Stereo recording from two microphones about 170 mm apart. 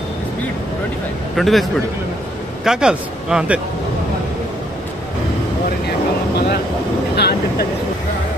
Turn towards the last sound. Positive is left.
turn(degrees=70)  # may be behind; listen again after turning